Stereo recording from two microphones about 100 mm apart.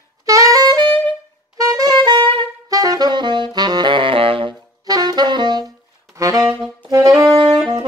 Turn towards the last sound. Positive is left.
turn(degrees=-10)  # may be behind; listen again after turning